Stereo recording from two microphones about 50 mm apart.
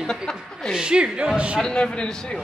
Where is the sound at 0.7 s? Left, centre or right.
Centre.